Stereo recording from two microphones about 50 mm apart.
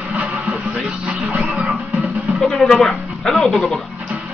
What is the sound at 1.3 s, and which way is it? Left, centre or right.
Music, right.